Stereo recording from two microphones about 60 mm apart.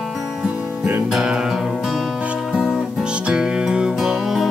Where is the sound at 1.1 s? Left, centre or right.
Centre.